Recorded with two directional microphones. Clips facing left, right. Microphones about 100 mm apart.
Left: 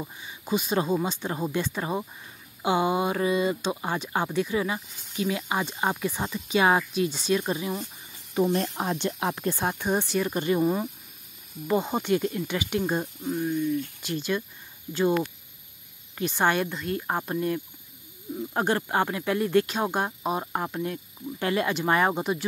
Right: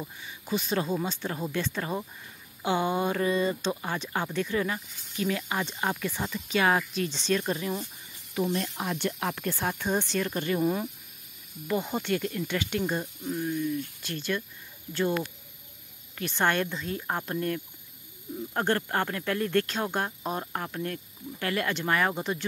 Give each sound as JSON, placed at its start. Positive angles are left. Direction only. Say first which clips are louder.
{"t": 0.0, "sound": "speech", "louder": "left 2 dB", "side_deg": 20}
{"t": 8.5, "sound": "speech", "louder": "left 4 dB", "side_deg": 35}
{"t": 10.6, "sound": "speech", "louder": "even", "side_deg": 5}
{"t": 11.6, "sound": "speech", "louder": "left 4 dB", "side_deg": 25}
{"t": 13.4, "sound": "speech", "louder": "left 3 dB", "side_deg": 5}
{"t": 14.0, "sound": "speech", "louder": "left 3 dB", "side_deg": 15}
{"t": 16.2, "sound": "speech", "louder": "left 2 dB", "side_deg": 15}
{"t": 16.7, "sound": "speech", "louder": "left 3 dB", "side_deg": 0}